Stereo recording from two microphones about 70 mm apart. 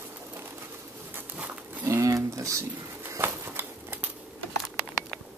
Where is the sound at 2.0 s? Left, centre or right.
Right.